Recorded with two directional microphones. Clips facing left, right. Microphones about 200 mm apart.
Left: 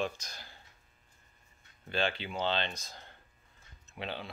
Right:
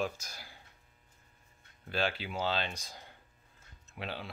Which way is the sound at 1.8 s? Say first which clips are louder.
Left 1 dB; 5° right (ahead or behind).